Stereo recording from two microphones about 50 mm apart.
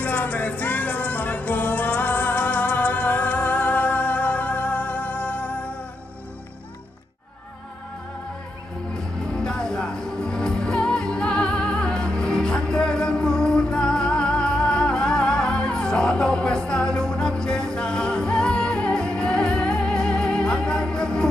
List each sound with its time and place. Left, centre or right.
0.0 s music: left
9.4 s music: centre